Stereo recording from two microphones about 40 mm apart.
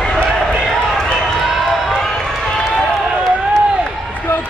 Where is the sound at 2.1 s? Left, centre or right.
Centre.